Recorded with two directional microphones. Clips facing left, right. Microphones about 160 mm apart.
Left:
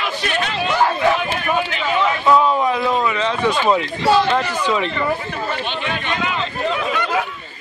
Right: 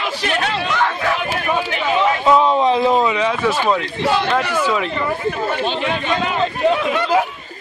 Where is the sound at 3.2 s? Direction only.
10° right (ahead or behind).